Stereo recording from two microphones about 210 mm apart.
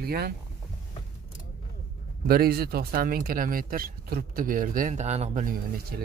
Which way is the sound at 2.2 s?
45° right (ahead or behind).